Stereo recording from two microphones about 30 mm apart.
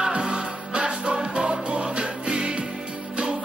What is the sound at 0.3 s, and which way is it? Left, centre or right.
Music, right.